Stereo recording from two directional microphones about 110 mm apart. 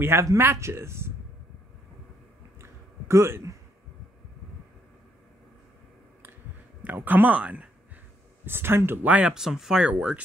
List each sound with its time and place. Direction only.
0.0 s speech: 25° right (ahead or behind)
2.6 s a sound: 25° right (ahead or behind)
7.1 s speech: 15° right (ahead or behind)